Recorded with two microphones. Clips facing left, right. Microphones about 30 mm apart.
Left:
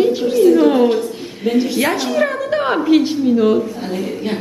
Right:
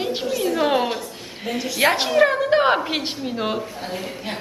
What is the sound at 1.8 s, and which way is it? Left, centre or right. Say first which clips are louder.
Speech: even; right.